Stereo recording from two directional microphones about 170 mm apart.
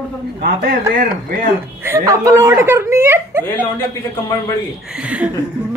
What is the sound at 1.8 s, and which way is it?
Speech, 15° right (ahead or behind).